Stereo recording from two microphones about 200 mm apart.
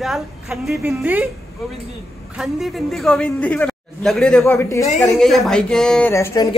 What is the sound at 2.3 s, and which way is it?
Speech, centre (ahead or behind).